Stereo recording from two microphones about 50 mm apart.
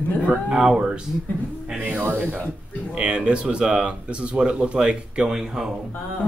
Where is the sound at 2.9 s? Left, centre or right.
Right.